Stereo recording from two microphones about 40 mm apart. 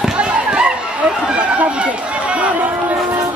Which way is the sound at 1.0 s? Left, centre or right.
Right.